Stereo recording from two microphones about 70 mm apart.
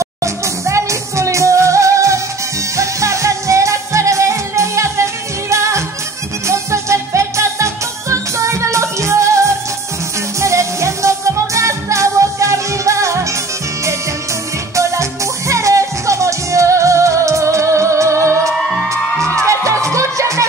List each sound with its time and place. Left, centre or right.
0.0 s music: right
14.8 s music: right